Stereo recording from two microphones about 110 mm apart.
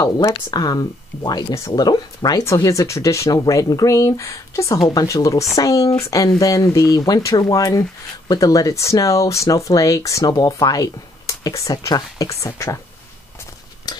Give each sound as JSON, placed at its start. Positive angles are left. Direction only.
{"t": 0.0, "sound": "speech", "side_deg": 35}
{"t": 1.5, "sound": "speech", "side_deg": 25}
{"t": 13.9, "sound": "a sound", "side_deg": 35}